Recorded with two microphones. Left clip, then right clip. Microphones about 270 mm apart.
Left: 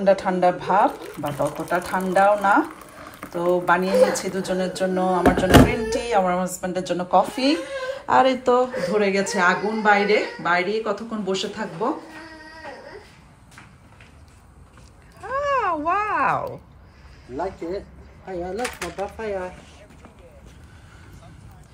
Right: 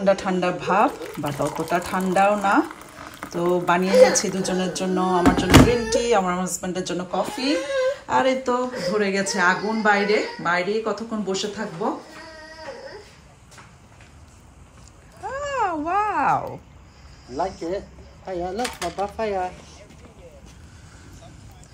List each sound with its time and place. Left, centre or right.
0.0 s speech: centre
15.2 s cat: centre
17.4 s speech: centre